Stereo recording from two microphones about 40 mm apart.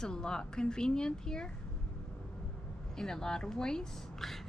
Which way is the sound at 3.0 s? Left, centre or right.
Centre.